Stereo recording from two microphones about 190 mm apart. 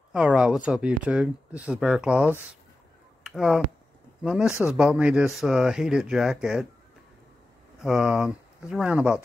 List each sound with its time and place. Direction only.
0.1 s speech: 5° right (ahead or behind)
7.8 s speech: 5° right (ahead or behind)